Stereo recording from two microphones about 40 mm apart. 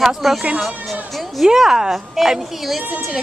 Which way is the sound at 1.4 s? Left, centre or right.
Centre.